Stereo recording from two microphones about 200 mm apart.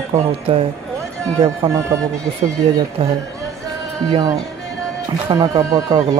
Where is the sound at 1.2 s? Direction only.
15° right (ahead or behind).